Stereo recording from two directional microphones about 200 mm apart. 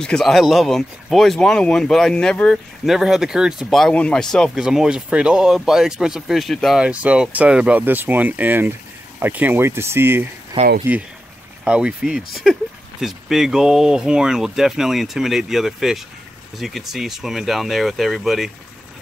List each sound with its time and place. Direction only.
0.0 s speech: centre (ahead or behind)
10.6 s speech: 30° right (ahead or behind)
11.6 s speech: 5° right (ahead or behind)